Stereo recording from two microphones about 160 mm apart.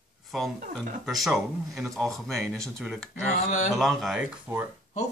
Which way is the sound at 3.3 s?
55° left (ahead or behind).